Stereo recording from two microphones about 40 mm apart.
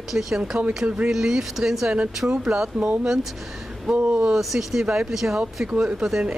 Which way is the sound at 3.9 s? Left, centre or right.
Right.